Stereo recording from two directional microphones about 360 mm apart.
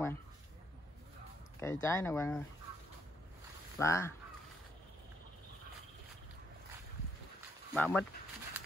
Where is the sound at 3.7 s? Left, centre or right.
Centre.